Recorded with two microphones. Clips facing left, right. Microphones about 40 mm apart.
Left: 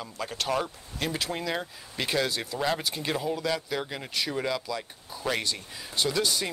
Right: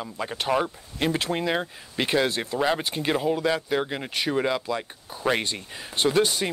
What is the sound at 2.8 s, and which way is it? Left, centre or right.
Speech, right.